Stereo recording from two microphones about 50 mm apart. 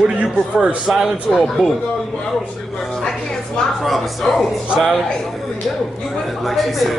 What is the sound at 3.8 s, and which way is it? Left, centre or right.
Speech, centre.